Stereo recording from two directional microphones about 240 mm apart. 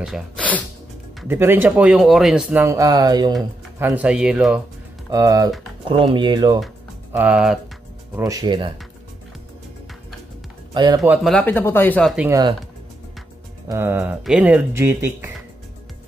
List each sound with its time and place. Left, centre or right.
0.0 s speech: centre
1.2 s speech: centre
3.8 s speech: centre
5.1 s speech: centre
6.6 s music: centre
8.2 s speech: centre
10.7 s speech: centre
11.0 s speech: centre
12.3 s speech: centre
13.7 s speech: centre